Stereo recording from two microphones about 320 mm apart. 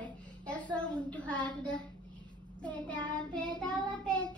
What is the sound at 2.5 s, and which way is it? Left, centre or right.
Child singing, centre.